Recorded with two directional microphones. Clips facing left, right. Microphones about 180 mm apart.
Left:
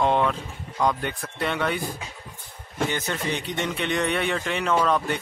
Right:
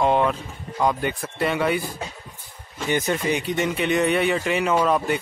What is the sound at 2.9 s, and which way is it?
Speech, 15° right (ahead or behind).